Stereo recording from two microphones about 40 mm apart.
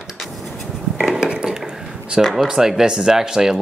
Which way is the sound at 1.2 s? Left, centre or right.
Centre.